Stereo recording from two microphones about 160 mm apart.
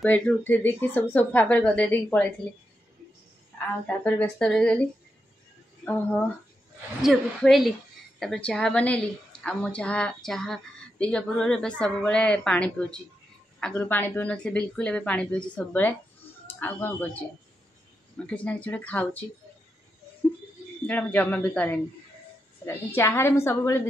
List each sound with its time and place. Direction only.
0.0 s speech: 10° left (ahead or behind)
3.8 s speech: 10° left (ahead or behind)
5.9 s speech: 10° left (ahead or behind)
7.0 s a woman's voice: centre (ahead or behind)
20.8 s speech: 10° left (ahead or behind)
22.9 s speech: 15° left (ahead or behind)